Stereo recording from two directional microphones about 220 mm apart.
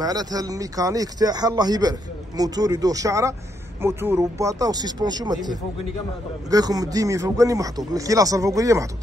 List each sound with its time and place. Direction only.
0.0 s speech: 15° right (ahead or behind)